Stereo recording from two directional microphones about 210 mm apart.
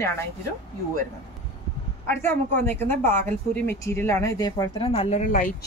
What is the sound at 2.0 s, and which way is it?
Speech, 10° left (ahead or behind).